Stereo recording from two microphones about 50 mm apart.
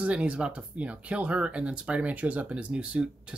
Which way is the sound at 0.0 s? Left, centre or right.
Right.